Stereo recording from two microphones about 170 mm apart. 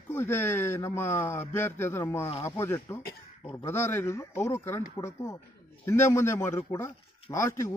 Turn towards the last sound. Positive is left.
turn(degrees=15)  # may be behind; listen again after turning